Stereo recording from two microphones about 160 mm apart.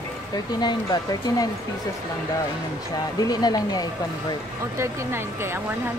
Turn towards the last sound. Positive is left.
turn(degrees=-15)  # may be behind; listen again after turning